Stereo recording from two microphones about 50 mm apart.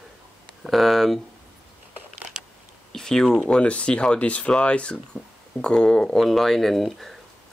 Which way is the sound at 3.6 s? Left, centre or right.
Left.